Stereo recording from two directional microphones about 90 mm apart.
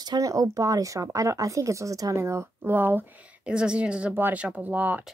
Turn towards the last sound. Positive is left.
turn(degrees=-20)  # may be behind; listen again after turning